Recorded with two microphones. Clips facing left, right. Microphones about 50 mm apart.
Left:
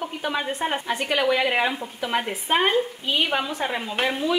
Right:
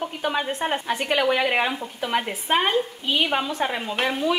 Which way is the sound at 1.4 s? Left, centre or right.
Centre.